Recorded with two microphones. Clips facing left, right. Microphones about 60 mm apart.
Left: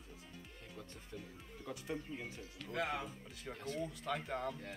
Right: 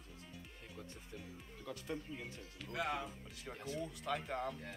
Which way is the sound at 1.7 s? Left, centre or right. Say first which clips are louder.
Left 1 dB; centre.